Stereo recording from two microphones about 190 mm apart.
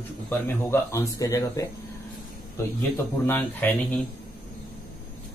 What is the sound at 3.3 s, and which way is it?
Speech, 10° left (ahead or behind).